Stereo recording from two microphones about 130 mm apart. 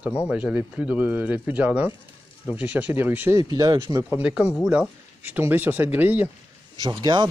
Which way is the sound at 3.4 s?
30° right (ahead or behind).